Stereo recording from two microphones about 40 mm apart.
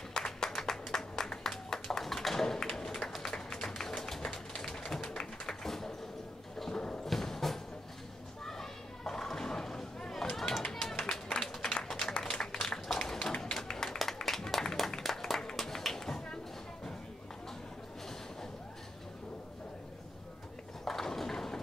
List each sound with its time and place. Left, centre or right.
0.1 s applause: centre
0.5 s clapping: centre
2.7 s a sound: centre
3.2 s tap: centre
5.0 s music: centre
7.1 s music: centre
8.5 s children playing: centre
10.3 s run: centre
11.3 s applause: centre
12.4 s a sound: centre
13.4 s music: centre
15.4 s a sound: centre
20.8 s a sound: centre